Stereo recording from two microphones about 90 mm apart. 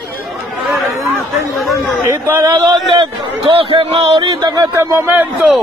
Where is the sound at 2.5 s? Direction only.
55° right (ahead or behind).